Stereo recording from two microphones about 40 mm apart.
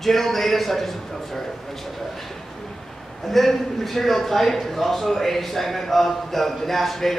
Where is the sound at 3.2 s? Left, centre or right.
Centre.